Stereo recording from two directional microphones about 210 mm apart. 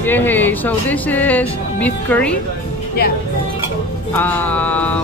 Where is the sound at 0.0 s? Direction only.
10° left (ahead or behind).